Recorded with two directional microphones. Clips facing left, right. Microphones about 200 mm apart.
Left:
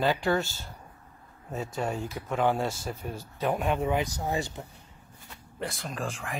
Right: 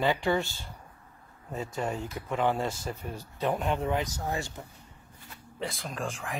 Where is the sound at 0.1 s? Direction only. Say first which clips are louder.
Left 1 dB; 15° right (ahead or behind).